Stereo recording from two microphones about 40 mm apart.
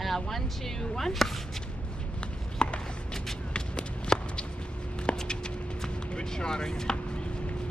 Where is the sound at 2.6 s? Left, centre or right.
Left.